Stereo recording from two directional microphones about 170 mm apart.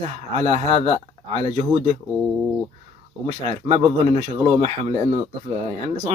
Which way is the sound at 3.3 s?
30° right (ahead or behind).